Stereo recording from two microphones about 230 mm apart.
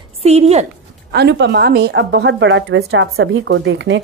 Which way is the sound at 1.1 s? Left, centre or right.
Right.